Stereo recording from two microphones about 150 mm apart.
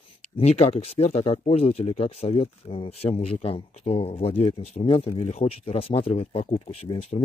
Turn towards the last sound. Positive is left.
turn(degrees=40)  # may be behind; listen again after turning